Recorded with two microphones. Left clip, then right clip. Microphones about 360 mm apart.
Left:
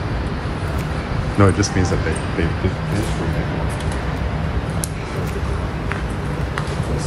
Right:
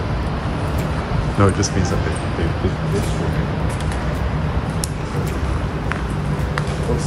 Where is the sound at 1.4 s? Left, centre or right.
Centre.